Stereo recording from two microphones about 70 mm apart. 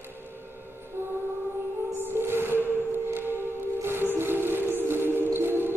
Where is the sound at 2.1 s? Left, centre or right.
Right.